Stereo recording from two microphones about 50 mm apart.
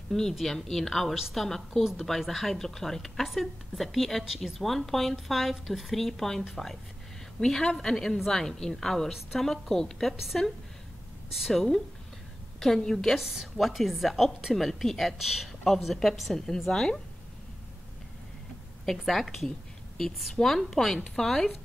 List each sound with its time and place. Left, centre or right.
0.1 s a woman's voice: centre
10.1 s speech: centre
11.5 s a woman's voice: centre
18.9 s a woman's voice: centre